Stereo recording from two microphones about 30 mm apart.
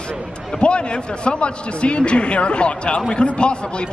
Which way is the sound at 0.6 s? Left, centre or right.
Left.